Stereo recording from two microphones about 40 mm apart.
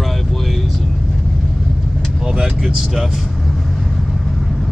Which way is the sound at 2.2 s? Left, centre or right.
Right.